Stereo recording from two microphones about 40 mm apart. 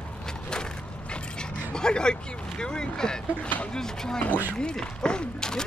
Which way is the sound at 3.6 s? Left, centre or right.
Centre.